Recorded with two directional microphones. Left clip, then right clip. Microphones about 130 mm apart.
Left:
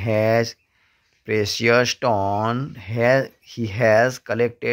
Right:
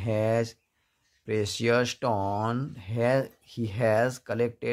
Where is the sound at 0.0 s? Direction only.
20° left (ahead or behind).